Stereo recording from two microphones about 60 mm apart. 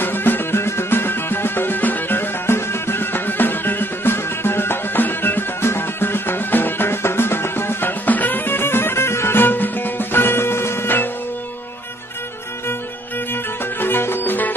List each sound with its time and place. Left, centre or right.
0.0 s music: left
8.0 s music: left
13.7 s music: left